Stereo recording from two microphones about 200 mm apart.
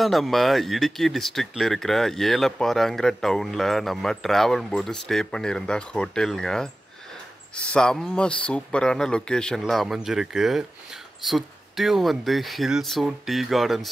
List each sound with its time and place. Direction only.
0.0 s speech: centre (ahead or behind)